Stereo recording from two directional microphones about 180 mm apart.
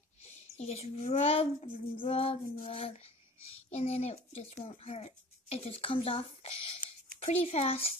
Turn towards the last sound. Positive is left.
turn(degrees=35)  # may be behind; listen again after turning